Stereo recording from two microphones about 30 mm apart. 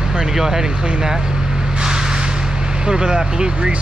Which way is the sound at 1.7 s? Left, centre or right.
Right.